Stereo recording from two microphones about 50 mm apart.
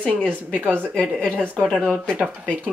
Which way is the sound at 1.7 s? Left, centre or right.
Centre.